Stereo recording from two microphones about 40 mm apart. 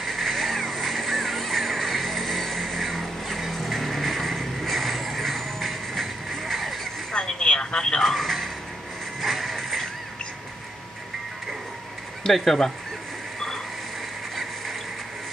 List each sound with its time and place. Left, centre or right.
0.0 s music: centre
7.1 s radio: centre
8.0 s a sound: centre
9.2 s music: centre
12.2 s speech: centre
14.3 s a sound: centre